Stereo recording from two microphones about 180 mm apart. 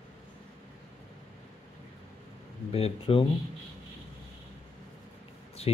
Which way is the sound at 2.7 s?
30° left (ahead or behind).